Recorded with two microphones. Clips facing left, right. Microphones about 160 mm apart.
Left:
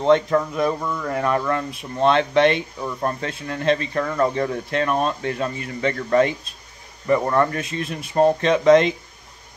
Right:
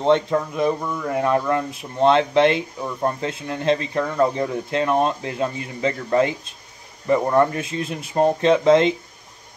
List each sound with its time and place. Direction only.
0.0 s speech: 20° right (ahead or behind)